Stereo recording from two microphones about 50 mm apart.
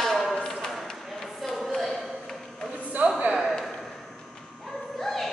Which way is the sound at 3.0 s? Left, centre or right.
Right.